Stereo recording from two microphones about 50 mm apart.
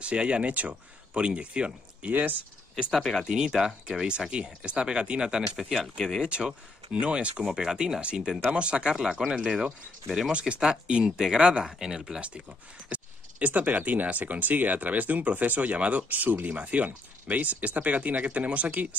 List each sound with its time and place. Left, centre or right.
0.0 s speech: right
2.9 s speech: centre
3.3 s speech: centre
12.9 s speech: right